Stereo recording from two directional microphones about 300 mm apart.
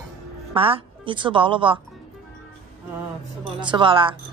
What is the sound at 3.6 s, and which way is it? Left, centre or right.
Speech, centre.